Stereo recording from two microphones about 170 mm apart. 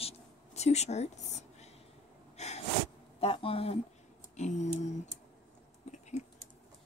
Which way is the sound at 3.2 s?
35° left (ahead or behind).